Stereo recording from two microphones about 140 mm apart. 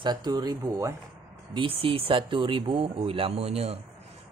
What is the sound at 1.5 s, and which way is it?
A man's voice, 40° right (ahead or behind).